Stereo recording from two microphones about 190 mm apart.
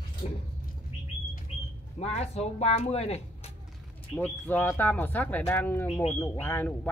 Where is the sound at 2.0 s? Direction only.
35° left (ahead or behind).